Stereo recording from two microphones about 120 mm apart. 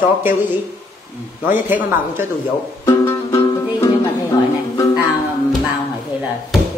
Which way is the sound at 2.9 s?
25° left (ahead or behind).